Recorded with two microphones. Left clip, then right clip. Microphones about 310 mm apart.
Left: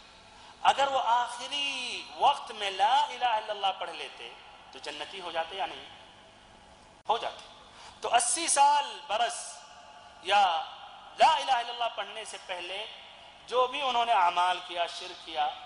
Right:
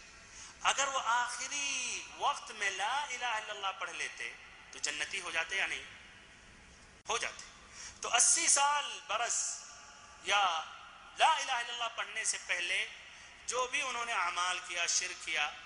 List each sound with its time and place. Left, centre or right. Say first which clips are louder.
0.7 s a man's voice: left 7 dB; centre
8.0 s a man's voice: left 3 dB; centre